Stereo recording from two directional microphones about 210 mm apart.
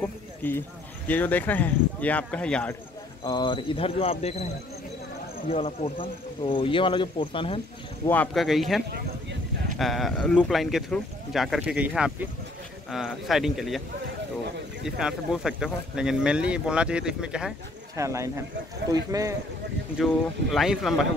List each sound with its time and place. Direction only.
0.0 s speech: 10° left (ahead or behind)
3.3 s speech: 20° left (ahead or behind)
5.5 s speech: 30° left (ahead or behind)
8.1 s speech: 5° left (ahead or behind)
15.0 s speech: 5° right (ahead or behind)
17.9 s speech: 15° right (ahead or behind)
20.5 s speech: centre (ahead or behind)